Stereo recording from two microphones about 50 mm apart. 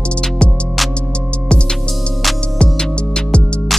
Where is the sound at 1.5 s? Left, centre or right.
Centre.